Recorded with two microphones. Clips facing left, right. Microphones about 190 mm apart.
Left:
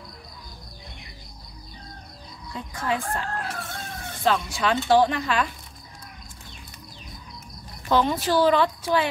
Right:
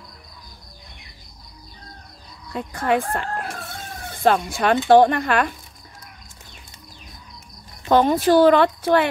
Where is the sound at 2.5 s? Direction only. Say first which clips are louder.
Right 7 dB; 60° right (ahead or behind).